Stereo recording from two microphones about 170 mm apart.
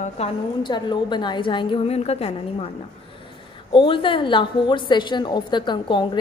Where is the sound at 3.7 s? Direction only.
30° left (ahead or behind).